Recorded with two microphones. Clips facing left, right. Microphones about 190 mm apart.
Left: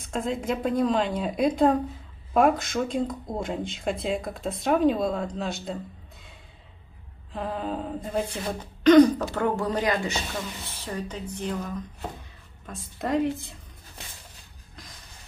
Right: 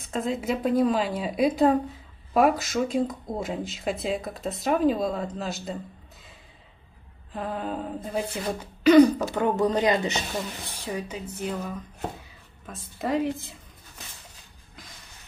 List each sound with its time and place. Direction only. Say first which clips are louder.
0.1 s speech: right 1 dB; 5° right (ahead or behind)
7.3 s speech: even; centre (ahead or behind)
9.4 s speech: right 4 dB; 20° right (ahead or behind)
10.8 s speech: right 1 dB; 10° right (ahead or behind)